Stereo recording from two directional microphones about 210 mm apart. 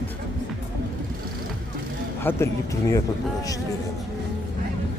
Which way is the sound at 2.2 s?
10° left (ahead or behind).